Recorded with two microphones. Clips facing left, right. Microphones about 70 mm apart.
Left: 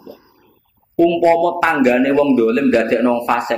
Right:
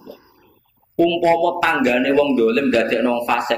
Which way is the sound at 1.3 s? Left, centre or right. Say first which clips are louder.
Left 2 dB; left.